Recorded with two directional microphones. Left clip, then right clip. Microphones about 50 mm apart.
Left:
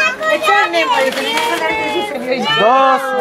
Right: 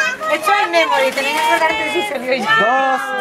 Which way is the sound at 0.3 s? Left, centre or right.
Right.